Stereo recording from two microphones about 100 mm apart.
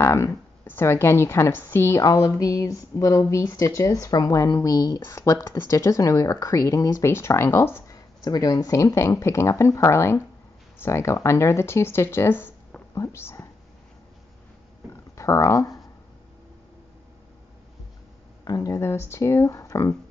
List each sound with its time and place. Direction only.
0.0 s a woman's voice: 30° left (ahead or behind)
2.0 s speech: 35° left (ahead or behind)
7.9 s speech: 40° left (ahead or behind)
14.9 s a sound: 30° left (ahead or behind)
18.4 s speech: 40° left (ahead or behind)
18.8 s speech: 25° left (ahead or behind)